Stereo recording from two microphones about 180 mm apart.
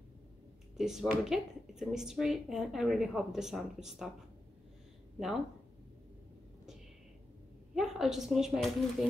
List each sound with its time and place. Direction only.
0.7 s speech: 5° right (ahead or behind)
7.7 s speech: centre (ahead or behind)